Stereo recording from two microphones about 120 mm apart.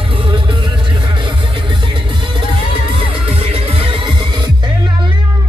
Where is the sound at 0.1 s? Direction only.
45° right (ahead or behind).